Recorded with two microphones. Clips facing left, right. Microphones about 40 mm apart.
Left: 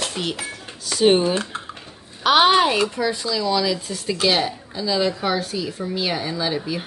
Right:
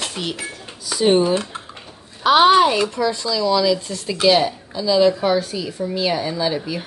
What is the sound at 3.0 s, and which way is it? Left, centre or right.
Speech, left.